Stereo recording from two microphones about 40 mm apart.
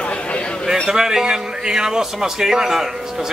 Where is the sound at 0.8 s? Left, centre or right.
Centre.